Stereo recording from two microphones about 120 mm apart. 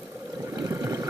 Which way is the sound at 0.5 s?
25° right (ahead or behind).